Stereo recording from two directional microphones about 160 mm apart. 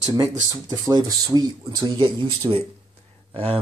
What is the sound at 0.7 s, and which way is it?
Speech, 25° right (ahead or behind).